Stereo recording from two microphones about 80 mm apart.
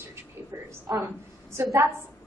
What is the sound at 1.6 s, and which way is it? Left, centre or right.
Speech, right.